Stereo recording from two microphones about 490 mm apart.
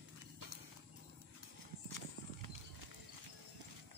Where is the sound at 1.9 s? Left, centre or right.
Right.